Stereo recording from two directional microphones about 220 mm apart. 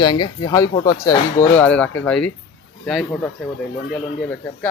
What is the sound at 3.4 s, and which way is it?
Speech, 5° left (ahead or behind).